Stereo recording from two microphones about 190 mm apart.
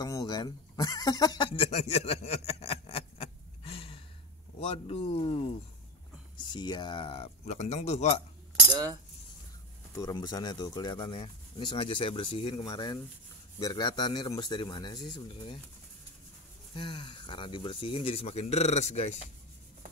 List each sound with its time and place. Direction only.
0.0 s speech: 20° left (ahead or behind)
9.9 s speech: 20° left (ahead or behind)
16.7 s speech: 25° left (ahead or behind)